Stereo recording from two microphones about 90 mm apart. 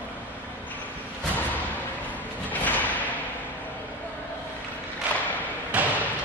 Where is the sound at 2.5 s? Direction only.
20° left (ahead or behind).